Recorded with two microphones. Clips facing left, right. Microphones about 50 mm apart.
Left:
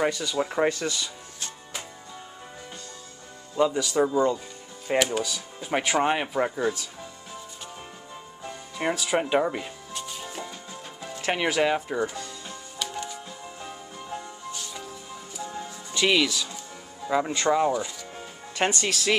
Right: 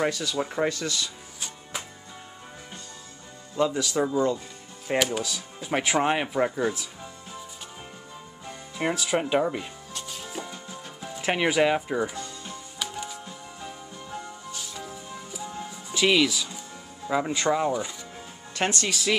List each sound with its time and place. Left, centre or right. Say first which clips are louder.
0.0 s speech: left 1 dB; centre
3.5 s speech: left 2 dB; centre
8.7 s music: even; centre
11.0 s speech: right 1 dB; centre
12.7 s music: left 1 dB; centre
14.5 s music: even; centre
17.1 s speech: left 1 dB; centre